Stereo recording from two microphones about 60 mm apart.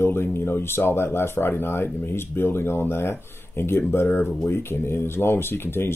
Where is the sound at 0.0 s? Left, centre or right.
Left.